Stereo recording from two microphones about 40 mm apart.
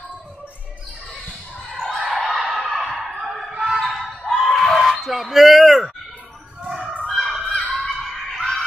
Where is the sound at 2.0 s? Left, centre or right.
Centre.